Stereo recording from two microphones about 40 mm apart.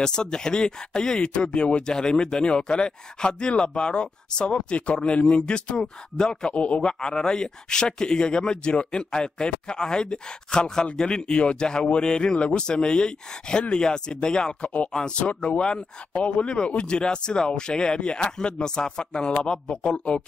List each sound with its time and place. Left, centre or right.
0.0 s speech: centre
6.5 s a man's voice: left
6.9 s speech: centre